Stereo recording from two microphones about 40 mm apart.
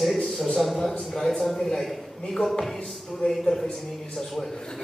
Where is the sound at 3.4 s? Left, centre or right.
Centre.